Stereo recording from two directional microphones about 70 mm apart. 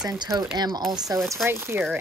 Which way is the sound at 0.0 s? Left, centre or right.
Right.